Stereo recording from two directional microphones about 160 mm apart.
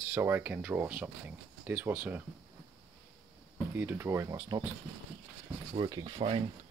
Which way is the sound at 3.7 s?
15° right (ahead or behind).